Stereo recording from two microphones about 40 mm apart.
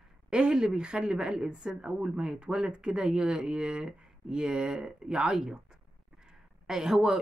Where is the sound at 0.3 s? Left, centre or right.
Right.